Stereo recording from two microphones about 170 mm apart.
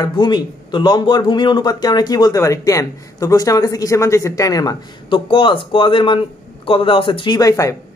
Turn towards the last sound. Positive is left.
turn(degrees=20)  # may be behind; listen again after turning